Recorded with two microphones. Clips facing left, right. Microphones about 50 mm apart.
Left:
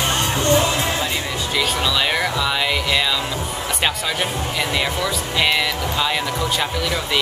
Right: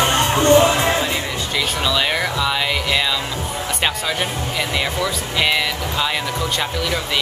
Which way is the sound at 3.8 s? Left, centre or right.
Centre.